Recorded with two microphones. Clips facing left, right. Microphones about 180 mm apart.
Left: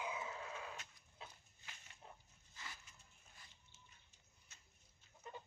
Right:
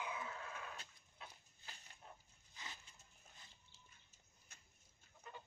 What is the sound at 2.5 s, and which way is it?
Dog, 20° right (ahead or behind).